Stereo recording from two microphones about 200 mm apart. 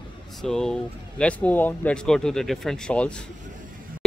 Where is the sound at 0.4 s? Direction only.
Centre (ahead or behind).